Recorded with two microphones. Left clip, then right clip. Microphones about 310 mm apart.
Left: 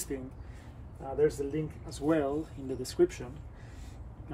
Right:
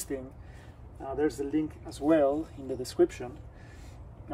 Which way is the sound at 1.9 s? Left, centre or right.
Centre.